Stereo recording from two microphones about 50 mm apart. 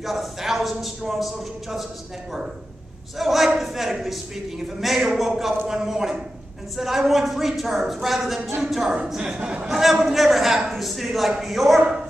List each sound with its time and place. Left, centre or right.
0.0 s a man's voice: centre
3.2 s a man's voice: centre
9.2 s a man's voice: right
9.7 s a man's voice: centre